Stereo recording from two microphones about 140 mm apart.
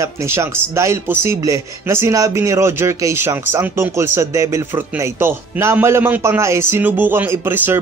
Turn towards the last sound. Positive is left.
turn(degrees=-15)  # may be behind; listen again after turning